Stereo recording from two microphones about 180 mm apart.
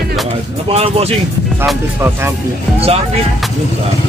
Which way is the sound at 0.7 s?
35° right (ahead or behind).